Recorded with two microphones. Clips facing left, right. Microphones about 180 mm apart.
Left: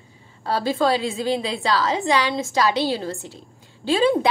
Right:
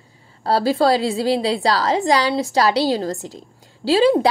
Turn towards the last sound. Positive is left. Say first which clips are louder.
# right 4 dB
turn(degrees=-35)  # may be behind; listen again after turning